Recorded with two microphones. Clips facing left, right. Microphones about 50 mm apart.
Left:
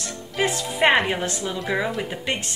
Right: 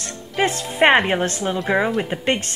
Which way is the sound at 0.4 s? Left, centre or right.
Right.